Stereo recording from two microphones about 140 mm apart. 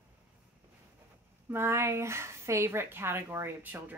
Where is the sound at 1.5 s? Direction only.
15° right (ahead or behind).